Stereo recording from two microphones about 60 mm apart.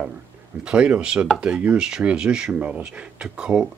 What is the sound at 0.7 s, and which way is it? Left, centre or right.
Speech, centre.